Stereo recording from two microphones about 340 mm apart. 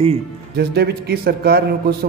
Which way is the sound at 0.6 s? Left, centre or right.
Right.